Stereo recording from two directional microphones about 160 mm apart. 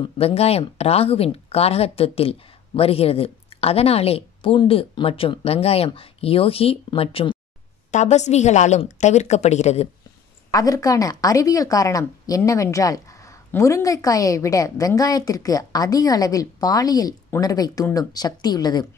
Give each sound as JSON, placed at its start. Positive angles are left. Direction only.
{"t": 0.2, "sound": "speech", "side_deg": 40}
{"t": 7.9, "sound": "a woman's voice", "side_deg": 45}
{"t": 10.5, "sound": "a woman's voice", "side_deg": 20}